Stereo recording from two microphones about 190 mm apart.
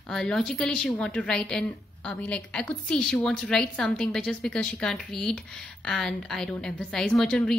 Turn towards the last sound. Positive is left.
turn(degrees=5)  # may be behind; listen again after turning